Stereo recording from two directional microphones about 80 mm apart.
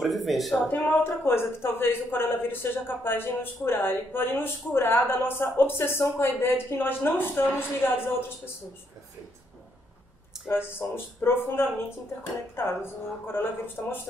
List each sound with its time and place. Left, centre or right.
0.0 s speech: centre
0.7 s a woman's voice: left
10.7 s a woman's voice: left